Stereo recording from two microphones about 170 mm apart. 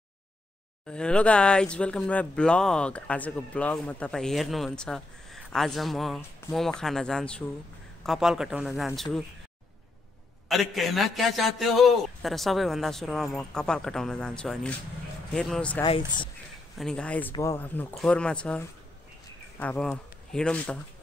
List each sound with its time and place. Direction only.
0.8 s speech: 5° left (ahead or behind)
10.5 s speech: centre (ahead or behind)
15.8 s speech: 30° left (ahead or behind)
16.7 s speech: 5° left (ahead or behind)